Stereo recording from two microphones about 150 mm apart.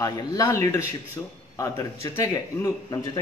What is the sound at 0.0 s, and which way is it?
Speech, 25° left (ahead or behind).